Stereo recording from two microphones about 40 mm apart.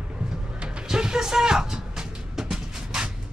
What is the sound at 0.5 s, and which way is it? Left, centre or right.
Train, right.